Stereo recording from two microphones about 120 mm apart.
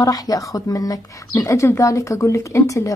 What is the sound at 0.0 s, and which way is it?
A woman's voice, 30° left (ahead or behind).